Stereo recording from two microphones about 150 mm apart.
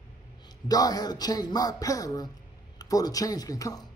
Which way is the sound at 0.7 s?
25° left (ahead or behind).